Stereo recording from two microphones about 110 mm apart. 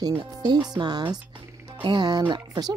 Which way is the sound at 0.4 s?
40° right (ahead or behind).